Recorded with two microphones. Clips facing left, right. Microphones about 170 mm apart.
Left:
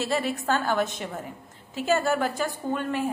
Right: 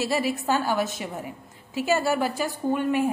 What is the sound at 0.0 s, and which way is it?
A woman's voice, 10° right (ahead or behind).